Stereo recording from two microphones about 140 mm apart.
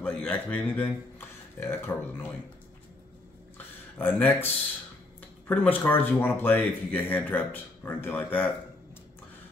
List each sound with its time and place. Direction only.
0.0 s speech: 10° left (ahead or behind)
3.5 s a sound: 10° left (ahead or behind)
5.5 s speech: 10° left (ahead or behind)